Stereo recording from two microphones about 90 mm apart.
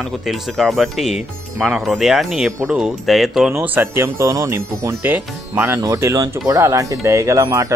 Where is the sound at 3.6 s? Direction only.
20° right (ahead or behind).